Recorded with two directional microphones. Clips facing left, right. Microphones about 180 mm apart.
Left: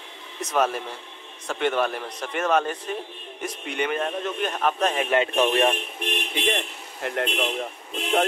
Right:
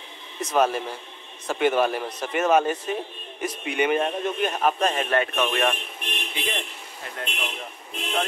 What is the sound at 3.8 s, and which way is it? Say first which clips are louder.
A man's voice: right 3 dB; 15° right (ahead or behind).